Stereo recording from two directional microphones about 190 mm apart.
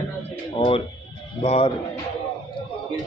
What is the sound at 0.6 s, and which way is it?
Speech, 30° left (ahead or behind).